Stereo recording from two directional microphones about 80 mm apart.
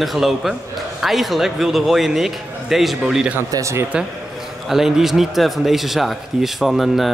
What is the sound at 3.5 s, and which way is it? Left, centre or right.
Speech, right.